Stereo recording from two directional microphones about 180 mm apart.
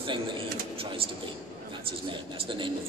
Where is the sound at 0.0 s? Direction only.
30° right (ahead or behind).